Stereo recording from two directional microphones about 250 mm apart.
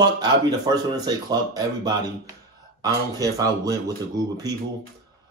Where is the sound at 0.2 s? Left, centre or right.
Centre.